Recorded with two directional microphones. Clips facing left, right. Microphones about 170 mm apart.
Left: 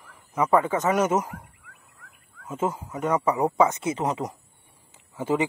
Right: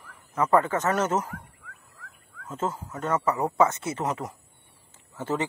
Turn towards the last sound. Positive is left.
turn(degrees=10)  # may be behind; listen again after turning